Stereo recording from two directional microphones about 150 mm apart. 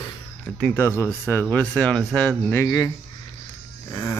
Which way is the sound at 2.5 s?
25° left (ahead or behind).